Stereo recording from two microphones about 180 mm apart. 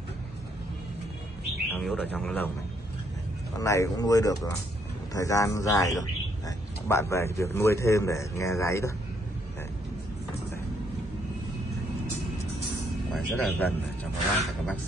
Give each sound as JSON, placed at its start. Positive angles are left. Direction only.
{"t": 1.7, "sound": "a man's voice", "side_deg": 5}
{"t": 3.5, "sound": "a man's voice", "side_deg": 15}
{"t": 13.1, "sound": "a man's voice", "side_deg": 10}